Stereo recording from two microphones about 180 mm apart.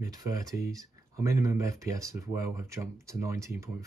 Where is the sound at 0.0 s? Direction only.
20° right (ahead or behind).